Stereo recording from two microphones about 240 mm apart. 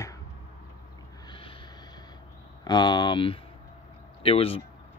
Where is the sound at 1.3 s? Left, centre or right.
Left.